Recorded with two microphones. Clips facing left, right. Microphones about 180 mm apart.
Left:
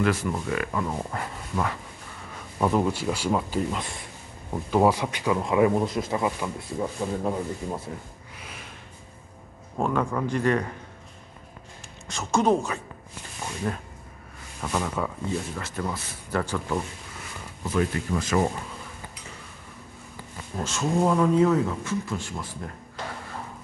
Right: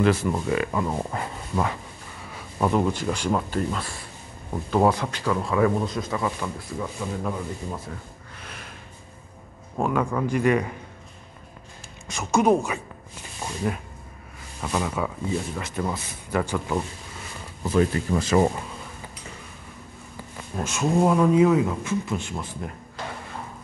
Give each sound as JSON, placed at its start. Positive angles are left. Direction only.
{"t": 0.0, "sound": "speech", "side_deg": -25}
{"t": 2.3, "sound": "speech", "side_deg": 0}
{"t": 8.4, "sound": "a sound", "side_deg": 5}
{"t": 9.8, "sound": "speech", "side_deg": -5}
{"t": 12.1, "sound": "speech", "side_deg": -10}
{"t": 15.6, "sound": "speech", "side_deg": -20}
{"t": 17.6, "sound": "speech", "side_deg": -30}
{"t": 20.6, "sound": "speech", "side_deg": -15}